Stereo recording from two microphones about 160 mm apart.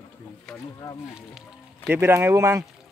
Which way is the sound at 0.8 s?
20° left (ahead or behind).